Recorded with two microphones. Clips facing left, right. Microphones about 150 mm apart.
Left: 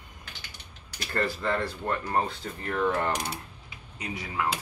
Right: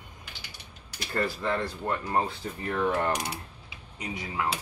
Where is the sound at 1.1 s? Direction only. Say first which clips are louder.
Even; 5° right (ahead or behind).